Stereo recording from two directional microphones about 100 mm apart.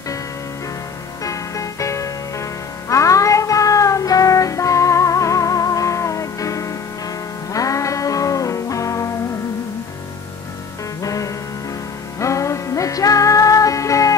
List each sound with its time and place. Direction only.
1.2 s music: 35° left (ahead or behind)
11.0 s music: 35° left (ahead or behind)